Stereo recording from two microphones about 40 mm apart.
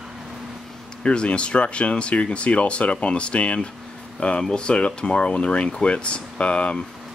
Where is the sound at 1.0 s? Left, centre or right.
Left.